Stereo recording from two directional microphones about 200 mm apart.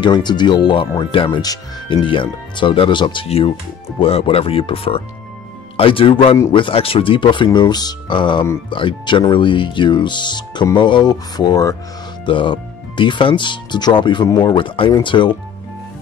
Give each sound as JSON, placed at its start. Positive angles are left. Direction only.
{"t": 0.0, "sound": "speech", "side_deg": 20}